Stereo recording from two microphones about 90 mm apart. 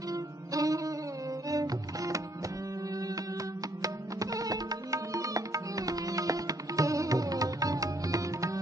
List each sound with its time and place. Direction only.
0.1 s music: 40° right (ahead or behind)
3.8 s music: 40° right (ahead or behind)